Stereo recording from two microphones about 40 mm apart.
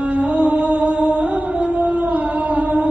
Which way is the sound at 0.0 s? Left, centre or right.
Right.